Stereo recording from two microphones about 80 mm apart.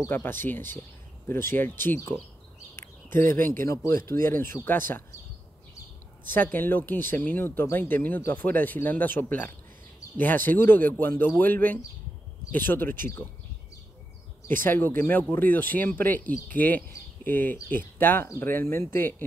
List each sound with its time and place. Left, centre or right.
0.1 s speech: left
3.1 s speech: left
3.6 s speech: left
6.3 s speech: left
14.5 s speech: left